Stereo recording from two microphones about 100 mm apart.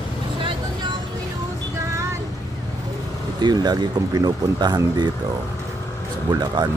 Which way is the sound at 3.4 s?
45° right (ahead or behind).